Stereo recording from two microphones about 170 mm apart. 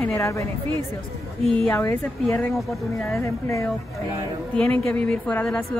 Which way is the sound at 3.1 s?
15° left (ahead or behind).